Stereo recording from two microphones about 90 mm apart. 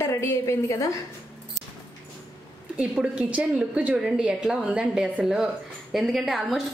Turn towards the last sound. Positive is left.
turn(degrees=0)  # may be behind; listen again after turning